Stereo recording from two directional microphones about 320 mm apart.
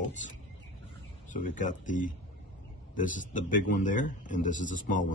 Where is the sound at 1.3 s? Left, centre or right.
Left.